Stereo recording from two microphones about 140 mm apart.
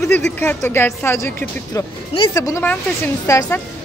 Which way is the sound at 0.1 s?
10° left (ahead or behind).